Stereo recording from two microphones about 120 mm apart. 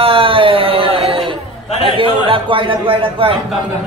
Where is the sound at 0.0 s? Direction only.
50° right (ahead or behind).